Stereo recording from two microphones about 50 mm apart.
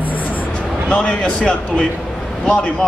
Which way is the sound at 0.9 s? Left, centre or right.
Left.